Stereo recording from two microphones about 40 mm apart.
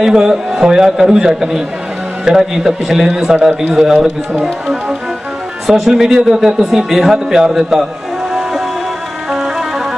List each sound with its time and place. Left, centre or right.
0.0 s a man's voice: centre
9.3 s music: centre